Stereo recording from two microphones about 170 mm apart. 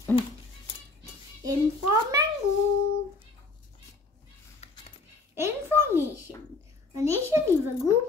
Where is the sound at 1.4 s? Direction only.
20° right (ahead or behind).